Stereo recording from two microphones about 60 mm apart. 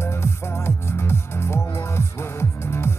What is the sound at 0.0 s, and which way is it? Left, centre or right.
Music, left.